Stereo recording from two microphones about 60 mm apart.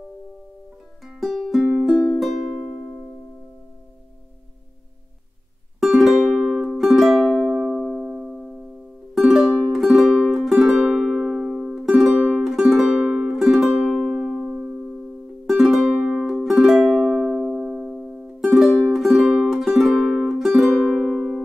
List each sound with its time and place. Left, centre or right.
1.0 s music: centre
5.8 s music: centre
12.2 s music: right
12.4 s music: centre
13.0 s music: right
13.3 s music: centre
19.2 s music: centre
19.5 s music: centre